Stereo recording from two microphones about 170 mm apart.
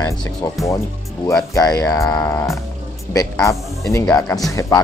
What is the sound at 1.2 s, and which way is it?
Speech, 20° left (ahead or behind).